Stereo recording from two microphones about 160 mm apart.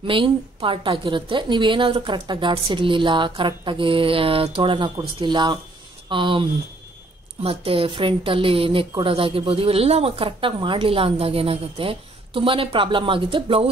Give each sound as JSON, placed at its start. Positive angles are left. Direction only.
{"t": 0.0, "sound": "a woman's voice", "side_deg": -30}
{"t": 7.4, "sound": "a woman's voice", "side_deg": -35}